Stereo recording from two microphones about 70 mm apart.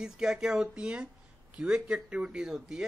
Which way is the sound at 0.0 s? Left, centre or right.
Centre.